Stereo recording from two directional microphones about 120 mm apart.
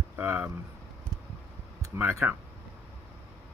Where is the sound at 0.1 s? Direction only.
15° right (ahead or behind).